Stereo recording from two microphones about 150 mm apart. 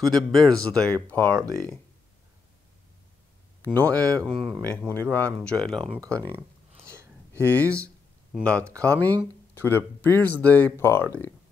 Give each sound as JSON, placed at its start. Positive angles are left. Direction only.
{"t": 0.0, "sound": "speech", "side_deg": 5}
{"t": 3.6, "sound": "speech", "side_deg": 10}
{"t": 6.3, "sound": "a sound", "side_deg": -15}
{"t": 7.4, "sound": "speech", "side_deg": 10}